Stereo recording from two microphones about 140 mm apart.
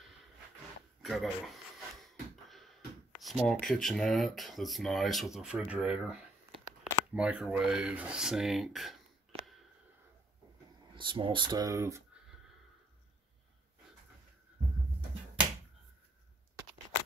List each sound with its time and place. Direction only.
1.0 s a sound: centre (ahead or behind)
5.7 s speech: 5° right (ahead or behind)
11.0 s speech: 35° right (ahead or behind); by 12.0 s 20° right (ahead or behind)